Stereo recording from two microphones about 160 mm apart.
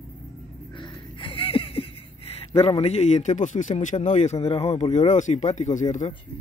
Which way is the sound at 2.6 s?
40° left (ahead or behind).